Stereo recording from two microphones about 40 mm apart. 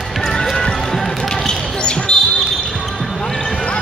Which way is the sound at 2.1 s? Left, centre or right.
Centre.